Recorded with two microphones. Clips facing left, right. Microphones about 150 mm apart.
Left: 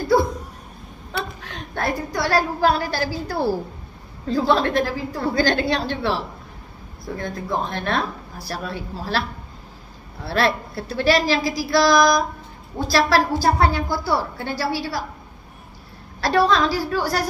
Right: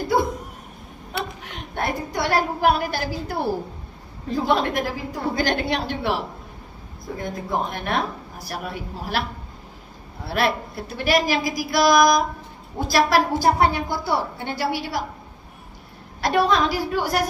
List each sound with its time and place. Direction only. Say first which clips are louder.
1.1 s a woman's voice: left 1 dB; 20° right (ahead or behind)
10.2 s a woman's voice: left 2 dB; 15° right (ahead or behind)
16.2 s a woman's voice: left 1 dB; 20° right (ahead or behind)